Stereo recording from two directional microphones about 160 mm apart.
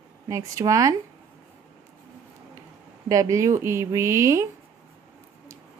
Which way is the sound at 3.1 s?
20° right (ahead or behind).